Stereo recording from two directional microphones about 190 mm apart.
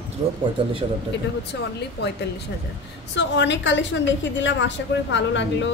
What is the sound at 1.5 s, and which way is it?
Speech, 65° left (ahead or behind).